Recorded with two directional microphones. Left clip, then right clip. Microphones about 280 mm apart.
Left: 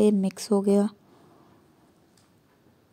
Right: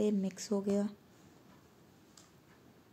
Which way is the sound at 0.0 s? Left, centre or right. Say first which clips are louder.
Left 11 dB; left.